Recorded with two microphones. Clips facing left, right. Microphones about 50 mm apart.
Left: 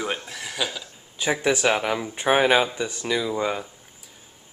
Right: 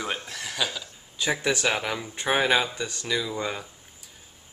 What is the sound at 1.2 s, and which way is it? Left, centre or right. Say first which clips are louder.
Speech: left 4 dB; centre.